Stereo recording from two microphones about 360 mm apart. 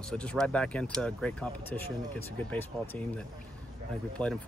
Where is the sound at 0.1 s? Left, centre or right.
Centre.